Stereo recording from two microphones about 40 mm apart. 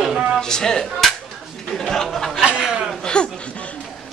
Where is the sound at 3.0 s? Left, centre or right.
Left.